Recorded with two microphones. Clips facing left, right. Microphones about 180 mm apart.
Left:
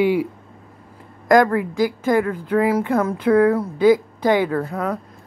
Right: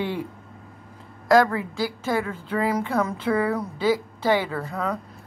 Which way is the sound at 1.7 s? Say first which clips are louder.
Left 7 dB; 15° left (ahead or behind).